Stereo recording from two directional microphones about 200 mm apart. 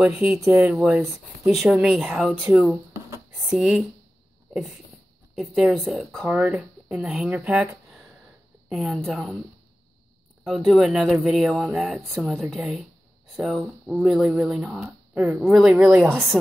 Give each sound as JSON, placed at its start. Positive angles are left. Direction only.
{"t": 0.0, "sound": "speech", "side_deg": -5}
{"t": 5.3, "sound": "speech", "side_deg": 0}
{"t": 10.4, "sound": "speech", "side_deg": 0}
{"t": 13.8, "sound": "speech", "side_deg": 0}